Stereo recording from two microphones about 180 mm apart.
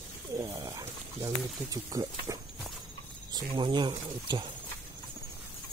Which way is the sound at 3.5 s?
25° right (ahead or behind).